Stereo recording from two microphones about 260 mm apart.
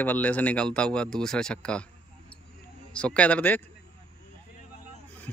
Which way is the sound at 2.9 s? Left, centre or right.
Centre.